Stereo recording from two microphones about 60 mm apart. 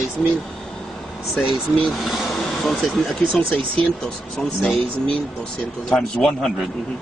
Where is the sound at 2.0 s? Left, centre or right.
Centre.